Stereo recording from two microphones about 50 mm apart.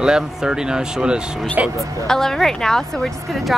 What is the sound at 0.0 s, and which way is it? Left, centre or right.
Speech, centre.